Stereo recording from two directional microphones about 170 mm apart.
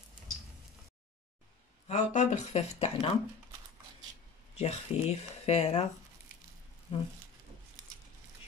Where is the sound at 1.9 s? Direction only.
40° left (ahead or behind).